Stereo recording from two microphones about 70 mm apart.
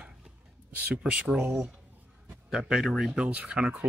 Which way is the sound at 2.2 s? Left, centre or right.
Centre.